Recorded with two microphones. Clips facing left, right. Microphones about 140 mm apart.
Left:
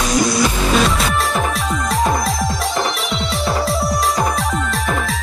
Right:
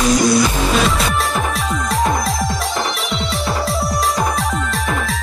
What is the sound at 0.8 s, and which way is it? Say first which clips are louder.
Music: even; centre (ahead or behind).